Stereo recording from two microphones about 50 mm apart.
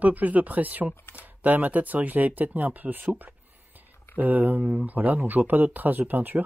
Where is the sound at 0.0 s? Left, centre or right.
Right.